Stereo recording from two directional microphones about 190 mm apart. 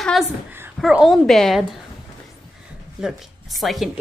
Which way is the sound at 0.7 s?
Centre (ahead or behind).